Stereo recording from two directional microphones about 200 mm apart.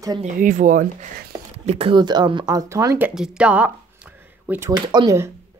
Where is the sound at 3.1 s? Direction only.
5° right (ahead or behind).